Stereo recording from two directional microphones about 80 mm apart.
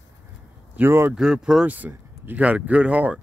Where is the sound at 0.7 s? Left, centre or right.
Right.